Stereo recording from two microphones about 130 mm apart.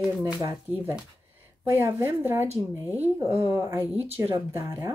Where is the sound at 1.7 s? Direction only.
15° right (ahead or behind).